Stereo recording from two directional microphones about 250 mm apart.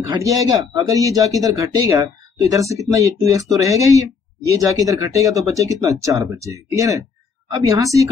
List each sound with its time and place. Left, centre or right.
0.1 s speech: centre